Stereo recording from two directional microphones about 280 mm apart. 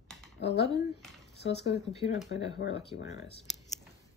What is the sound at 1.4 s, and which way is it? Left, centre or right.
Speech, left.